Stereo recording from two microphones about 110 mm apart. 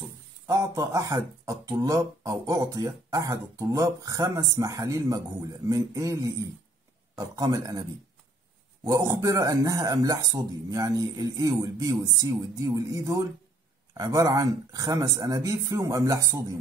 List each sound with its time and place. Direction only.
0.5 s speech: 30° right (ahead or behind)
8.8 s speech: 30° right (ahead or behind)